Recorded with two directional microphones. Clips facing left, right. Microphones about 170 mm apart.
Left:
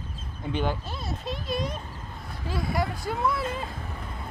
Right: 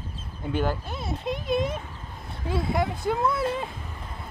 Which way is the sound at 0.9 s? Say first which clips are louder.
Right 3 dB; 20° right (ahead or behind).